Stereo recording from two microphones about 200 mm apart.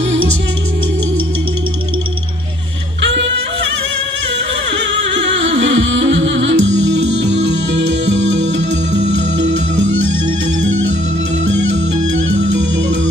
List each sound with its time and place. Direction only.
3.0 s music: 65° right (ahead or behind)
5.5 s music: 70° right (ahead or behind)